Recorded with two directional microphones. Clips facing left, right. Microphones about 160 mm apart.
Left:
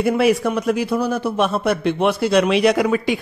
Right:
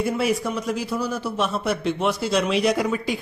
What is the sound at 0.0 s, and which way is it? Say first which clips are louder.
A man's voice: left 6 dB; 65° left (ahead or behind).